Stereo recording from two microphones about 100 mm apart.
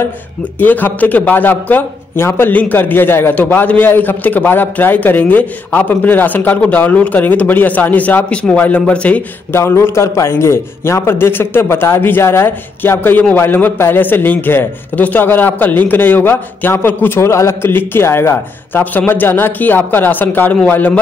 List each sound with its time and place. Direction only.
0.6 s a man's voice: 20° left (ahead or behind)
9.5 s a man's voice: 25° left (ahead or behind)